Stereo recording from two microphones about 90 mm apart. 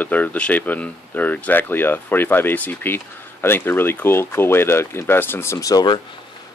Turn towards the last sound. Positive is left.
turn(degrees=40)  # may be behind; listen again after turning